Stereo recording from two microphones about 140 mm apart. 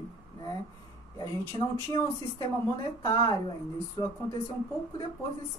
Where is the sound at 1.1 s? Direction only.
30° left (ahead or behind).